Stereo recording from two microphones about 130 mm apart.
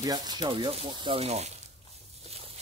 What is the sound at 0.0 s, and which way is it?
Speech, 30° right (ahead or behind).